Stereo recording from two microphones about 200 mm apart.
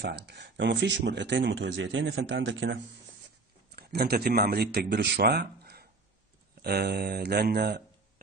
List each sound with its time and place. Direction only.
0.0 s speech: 60° right (ahead or behind)
3.7 s speech: 50° right (ahead or behind)